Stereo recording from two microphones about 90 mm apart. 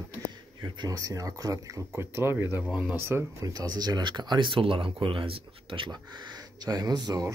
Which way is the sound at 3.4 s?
45° right (ahead or behind).